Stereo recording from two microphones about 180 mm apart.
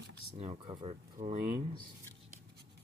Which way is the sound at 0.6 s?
20° right (ahead or behind).